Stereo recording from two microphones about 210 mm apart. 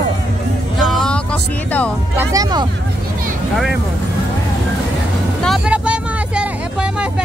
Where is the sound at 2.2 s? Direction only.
15° right (ahead or behind).